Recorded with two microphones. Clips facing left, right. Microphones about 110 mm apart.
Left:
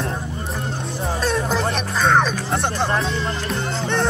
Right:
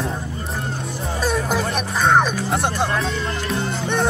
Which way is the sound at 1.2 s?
5° right (ahead or behind).